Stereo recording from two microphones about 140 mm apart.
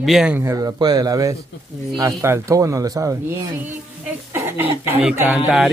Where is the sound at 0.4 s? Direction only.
20° right (ahead or behind).